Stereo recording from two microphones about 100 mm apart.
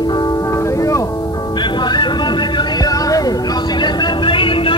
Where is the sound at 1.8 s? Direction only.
45° left (ahead or behind).